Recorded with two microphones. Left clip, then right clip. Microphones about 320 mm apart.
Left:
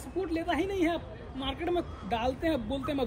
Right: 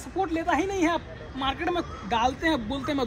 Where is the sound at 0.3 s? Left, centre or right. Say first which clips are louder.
Right 4 dB; centre.